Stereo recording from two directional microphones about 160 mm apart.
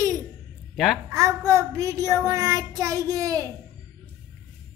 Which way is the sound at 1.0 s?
20° right (ahead or behind).